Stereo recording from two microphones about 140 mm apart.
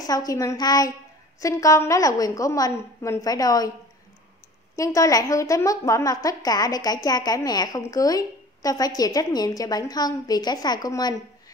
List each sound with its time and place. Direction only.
0.0 s a woman's voice: 25° left (ahead or behind)
4.7 s a woman's voice: 25° left (ahead or behind)